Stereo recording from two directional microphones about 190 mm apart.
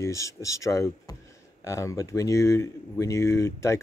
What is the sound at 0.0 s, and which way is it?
Speech, 15° left (ahead or behind).